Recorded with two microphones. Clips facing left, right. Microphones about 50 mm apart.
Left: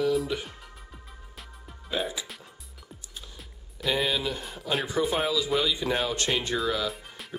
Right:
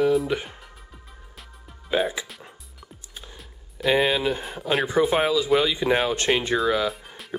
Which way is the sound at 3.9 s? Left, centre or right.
Right.